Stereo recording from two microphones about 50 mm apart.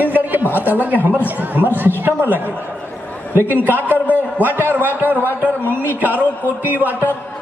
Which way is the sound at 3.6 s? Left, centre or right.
Right.